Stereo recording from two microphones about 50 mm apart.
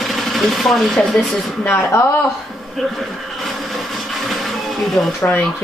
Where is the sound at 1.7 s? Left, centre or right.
Left.